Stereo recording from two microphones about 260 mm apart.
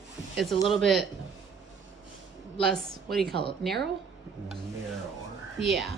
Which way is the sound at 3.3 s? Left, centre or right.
Right.